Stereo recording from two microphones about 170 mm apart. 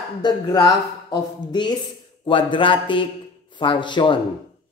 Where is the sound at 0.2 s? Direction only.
25° left (ahead or behind).